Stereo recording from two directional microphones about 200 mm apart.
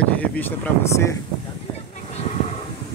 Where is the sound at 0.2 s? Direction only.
10° left (ahead or behind).